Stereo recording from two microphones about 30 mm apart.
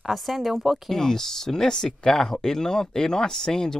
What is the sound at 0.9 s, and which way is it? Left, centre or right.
Speech, centre.